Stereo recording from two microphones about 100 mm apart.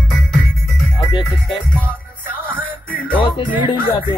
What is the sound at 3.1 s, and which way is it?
Music, 60° left (ahead or behind).